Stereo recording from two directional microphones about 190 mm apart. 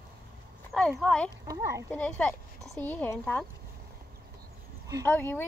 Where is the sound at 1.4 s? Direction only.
15° right (ahead or behind).